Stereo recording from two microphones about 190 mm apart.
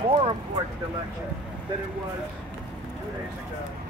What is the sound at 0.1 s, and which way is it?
Speech, 30° right (ahead or behind).